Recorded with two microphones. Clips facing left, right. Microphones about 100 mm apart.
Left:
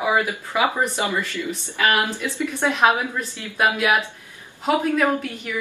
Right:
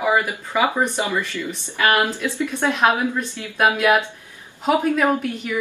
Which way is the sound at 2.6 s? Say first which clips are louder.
Even; 15° left (ahead or behind).